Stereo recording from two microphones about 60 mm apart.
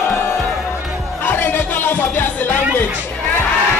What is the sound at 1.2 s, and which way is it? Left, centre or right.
Music, left.